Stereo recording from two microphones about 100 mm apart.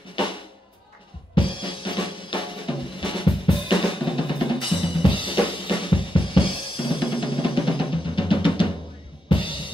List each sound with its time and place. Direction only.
1.3 s drum kit: 55° left (ahead or behind)